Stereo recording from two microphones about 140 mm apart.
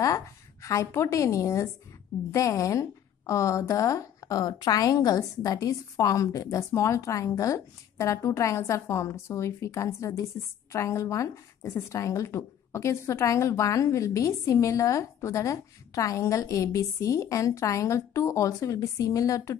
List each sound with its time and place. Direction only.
0.0 s a woman's voice: 20° left (ahead or behind)